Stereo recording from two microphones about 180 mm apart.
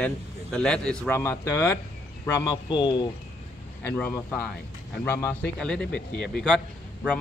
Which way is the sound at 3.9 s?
10° left (ahead or behind).